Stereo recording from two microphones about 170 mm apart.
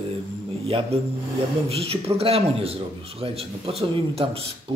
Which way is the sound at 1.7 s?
35° right (ahead or behind).